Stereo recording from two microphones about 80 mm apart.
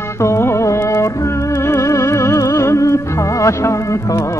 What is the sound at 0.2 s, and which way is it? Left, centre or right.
Music, left.